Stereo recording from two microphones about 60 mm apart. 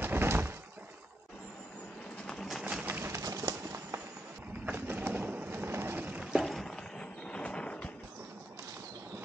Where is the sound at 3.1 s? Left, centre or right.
Right.